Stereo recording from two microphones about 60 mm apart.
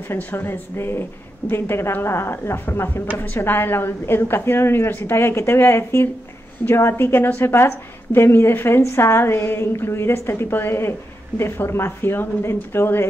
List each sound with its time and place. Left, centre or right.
0.2 s a woman's voice: left